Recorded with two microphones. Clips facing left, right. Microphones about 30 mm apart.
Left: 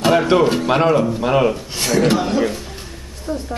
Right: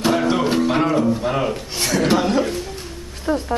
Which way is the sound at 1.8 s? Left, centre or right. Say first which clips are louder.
Left 2 dB; centre.